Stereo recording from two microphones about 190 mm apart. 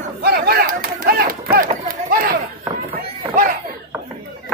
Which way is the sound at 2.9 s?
45° right (ahead or behind).